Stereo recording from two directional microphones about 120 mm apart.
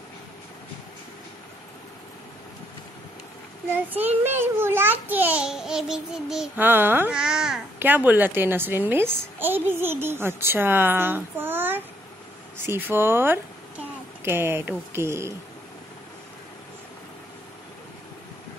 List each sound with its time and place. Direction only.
3.7 s a woman's voice: 15° right (ahead or behind)
6.5 s a woman's voice: 15° right (ahead or behind)
7.2 s speech: 5° right (ahead or behind)
7.8 s a woman's voice: 15° right (ahead or behind)